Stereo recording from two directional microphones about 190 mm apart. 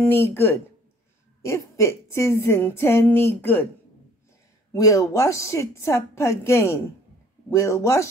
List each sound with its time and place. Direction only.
0.0 s a woman's voice: 10° left (ahead or behind)
4.7 s a woman's voice: 15° left (ahead or behind)